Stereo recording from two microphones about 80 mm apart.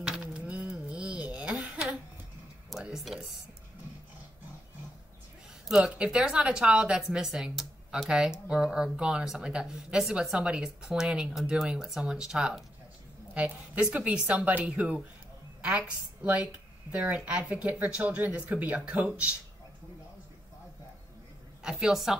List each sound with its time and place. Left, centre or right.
0.0 s a sound: centre
2.8 s speech: centre
5.7 s a woman's voice: centre
21.6 s a woman's voice: centre